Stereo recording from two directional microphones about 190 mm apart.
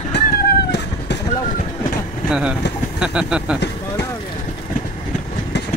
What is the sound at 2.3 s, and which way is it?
Speech, 5° right (ahead or behind).